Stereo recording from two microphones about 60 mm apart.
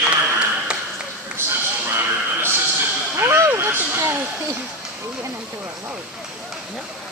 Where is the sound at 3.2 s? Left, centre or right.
Right.